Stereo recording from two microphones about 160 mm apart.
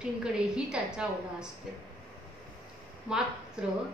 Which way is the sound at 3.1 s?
5° right (ahead or behind).